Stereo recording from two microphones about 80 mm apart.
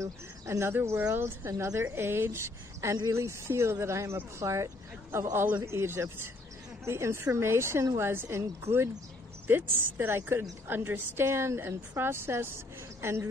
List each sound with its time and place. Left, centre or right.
0.0 s a woman's voice: right
5.3 s a woman's voice: right